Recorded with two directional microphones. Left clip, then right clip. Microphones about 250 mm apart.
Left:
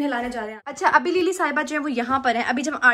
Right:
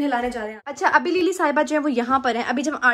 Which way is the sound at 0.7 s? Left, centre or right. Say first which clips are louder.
Even; centre.